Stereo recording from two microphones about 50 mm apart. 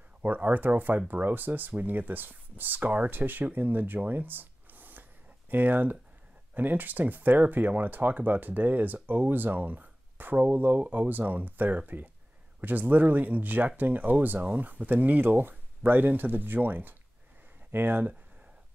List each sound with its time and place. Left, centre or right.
0.2 s speech: right